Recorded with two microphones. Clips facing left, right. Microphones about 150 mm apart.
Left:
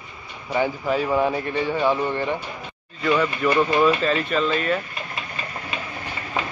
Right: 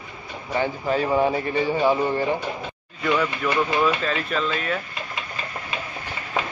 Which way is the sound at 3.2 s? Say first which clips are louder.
Left 3 dB; 5° left (ahead or behind).